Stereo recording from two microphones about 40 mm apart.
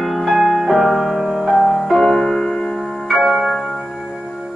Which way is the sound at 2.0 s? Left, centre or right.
Centre.